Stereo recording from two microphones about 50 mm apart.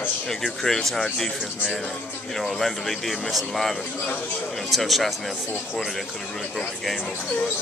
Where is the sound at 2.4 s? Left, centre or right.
Centre.